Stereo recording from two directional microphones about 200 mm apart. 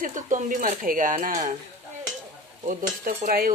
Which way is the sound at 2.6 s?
40° right (ahead or behind).